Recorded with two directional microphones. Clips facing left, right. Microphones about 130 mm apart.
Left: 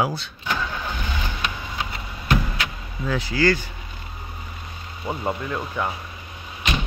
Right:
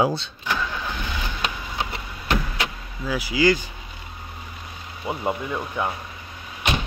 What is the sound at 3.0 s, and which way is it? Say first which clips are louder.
Speech: even; 5° right (ahead or behind).